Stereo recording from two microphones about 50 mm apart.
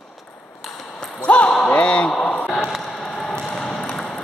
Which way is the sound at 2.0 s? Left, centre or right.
Centre.